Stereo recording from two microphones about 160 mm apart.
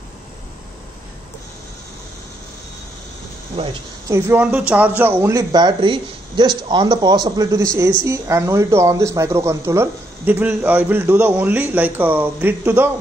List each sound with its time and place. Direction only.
3.6 s speech: 35° right (ahead or behind)
4.1 s speech: 10° right (ahead or behind)